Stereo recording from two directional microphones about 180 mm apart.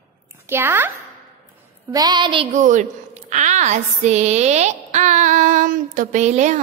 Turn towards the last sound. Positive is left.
turn(degrees=-40)  # may be behind; listen again after turning